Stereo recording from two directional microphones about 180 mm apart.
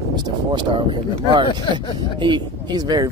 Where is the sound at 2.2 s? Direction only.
25° right (ahead or behind).